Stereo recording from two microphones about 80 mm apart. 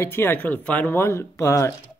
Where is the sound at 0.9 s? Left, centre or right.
Left.